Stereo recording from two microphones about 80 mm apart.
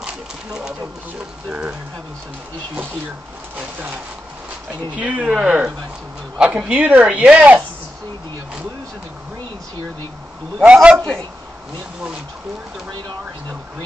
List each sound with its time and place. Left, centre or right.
0.0 s a sound: centre
1.5 s speech: centre
3.5 s speech: right
10.6 s speech: centre